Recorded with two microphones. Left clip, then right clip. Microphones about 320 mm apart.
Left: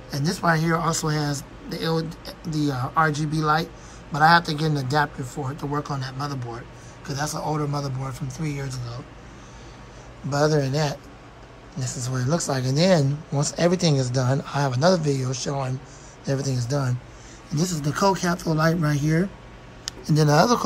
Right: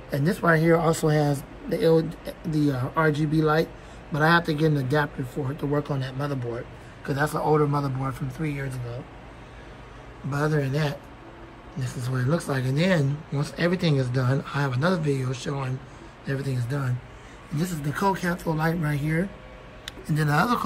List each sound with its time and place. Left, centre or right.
0.1 s speech: centre
10.3 s speech: centre